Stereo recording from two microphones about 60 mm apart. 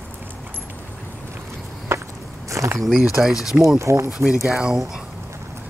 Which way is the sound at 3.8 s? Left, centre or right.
Right.